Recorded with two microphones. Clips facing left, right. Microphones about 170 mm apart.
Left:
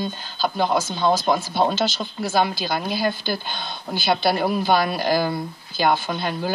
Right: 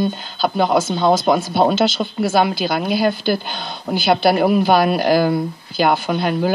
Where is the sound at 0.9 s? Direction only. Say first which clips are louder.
Right 5 dB; 65° right (ahead or behind).